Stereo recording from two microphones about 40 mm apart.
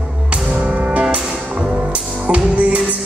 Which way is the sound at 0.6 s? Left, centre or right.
Right.